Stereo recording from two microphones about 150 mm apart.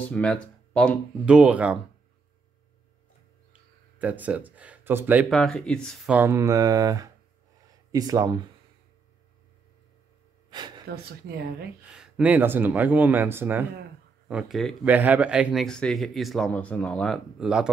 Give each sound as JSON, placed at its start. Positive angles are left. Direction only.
{"t": 0.1, "sound": "speech", "side_deg": 5}
{"t": 1.2, "sound": "speech", "side_deg": -10}
{"t": 4.0, "sound": "speech", "side_deg": -10}
{"t": 5.3, "sound": "speech", "side_deg": 5}
{"t": 6.0, "sound": "speech", "side_deg": -15}
{"t": 10.9, "sound": "speech", "side_deg": -90}
{"t": 11.9, "sound": "speech", "side_deg": -5}
{"t": 14.2, "sound": "speech", "side_deg": 0}